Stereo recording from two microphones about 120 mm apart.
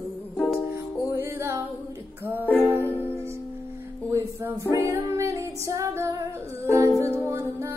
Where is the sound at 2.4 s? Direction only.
15° left (ahead or behind).